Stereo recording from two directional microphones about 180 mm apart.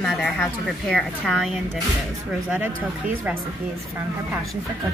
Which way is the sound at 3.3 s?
10° right (ahead or behind).